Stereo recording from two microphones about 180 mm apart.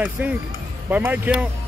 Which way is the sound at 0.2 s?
5° right (ahead or behind).